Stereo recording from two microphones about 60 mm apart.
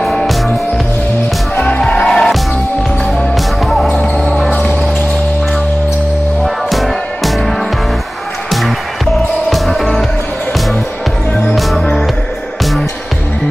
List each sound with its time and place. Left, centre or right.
0.0 s music: centre
1.9 s music: centre
3.6 s basketball bounce: centre
4.5 s a sound: left
6.4 s music: centre
9.5 s music: centre
11.5 s music: centre